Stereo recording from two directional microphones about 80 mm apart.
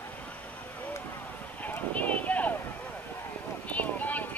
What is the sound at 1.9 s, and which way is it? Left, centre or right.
Clip-clop, centre.